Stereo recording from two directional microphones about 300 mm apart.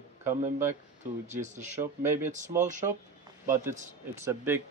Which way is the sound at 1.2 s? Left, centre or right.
Right.